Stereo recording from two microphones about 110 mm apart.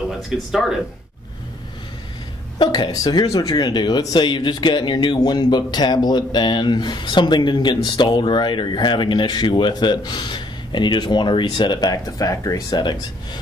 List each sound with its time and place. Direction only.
0.5 s speech: 5° right (ahead or behind)
2.6 s speech: 45° left (ahead or behind)